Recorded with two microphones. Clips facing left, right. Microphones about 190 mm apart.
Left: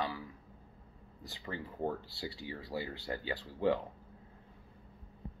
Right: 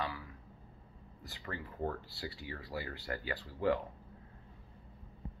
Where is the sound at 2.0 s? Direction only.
30° left (ahead or behind).